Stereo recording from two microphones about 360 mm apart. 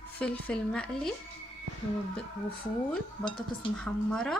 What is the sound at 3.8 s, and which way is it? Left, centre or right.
Speech, centre.